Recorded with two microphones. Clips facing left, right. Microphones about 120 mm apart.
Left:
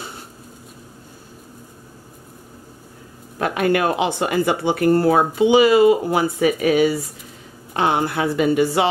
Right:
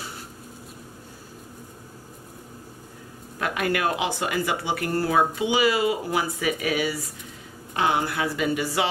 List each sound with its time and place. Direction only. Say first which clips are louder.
3.3 s speech: left 7 dB; 35° left (ahead or behind)